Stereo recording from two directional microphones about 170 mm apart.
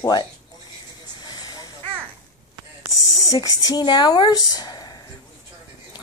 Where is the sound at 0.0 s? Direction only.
25° left (ahead or behind).